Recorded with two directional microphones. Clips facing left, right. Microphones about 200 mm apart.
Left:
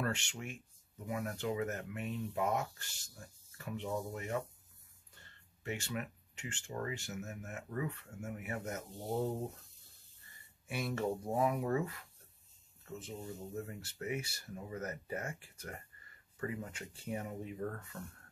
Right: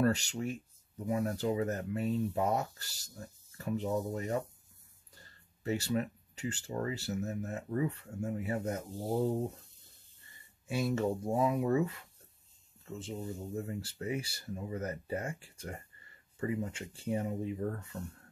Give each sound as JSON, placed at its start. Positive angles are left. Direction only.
{"t": 0.0, "sound": "speech", "side_deg": -35}
{"t": 10.7, "sound": "speech", "side_deg": -25}